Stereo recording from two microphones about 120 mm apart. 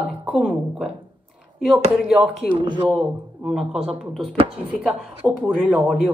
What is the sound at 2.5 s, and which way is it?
Speech, 40° right (ahead or behind).